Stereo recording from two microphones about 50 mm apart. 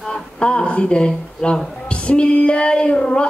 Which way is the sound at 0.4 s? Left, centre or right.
Left.